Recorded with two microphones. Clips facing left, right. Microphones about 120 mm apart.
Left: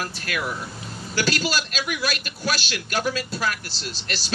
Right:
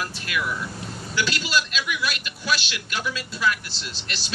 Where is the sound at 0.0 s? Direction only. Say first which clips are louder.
Even; 45° left (ahead or behind).